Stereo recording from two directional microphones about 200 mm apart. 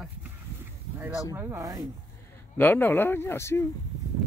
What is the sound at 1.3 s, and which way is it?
Speech, 10° right (ahead or behind).